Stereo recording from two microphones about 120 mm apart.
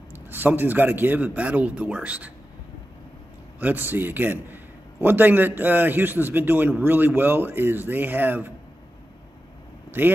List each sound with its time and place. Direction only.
0.3 s a man's voice: 15° right (ahead or behind)
3.5 s a man's voice: 15° right (ahead or behind)
9.8 s vehicle: 15° right (ahead or behind)